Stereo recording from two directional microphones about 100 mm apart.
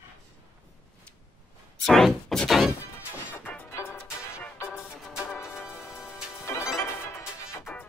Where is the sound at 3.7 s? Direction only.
25° left (ahead or behind).